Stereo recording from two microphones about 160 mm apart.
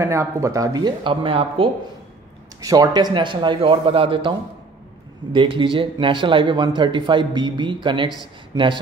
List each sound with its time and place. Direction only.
0.0 s speech: 20° right (ahead or behind); by 1.7 s 35° right (ahead or behind)
2.6 s a man's voice: 20° right (ahead or behind)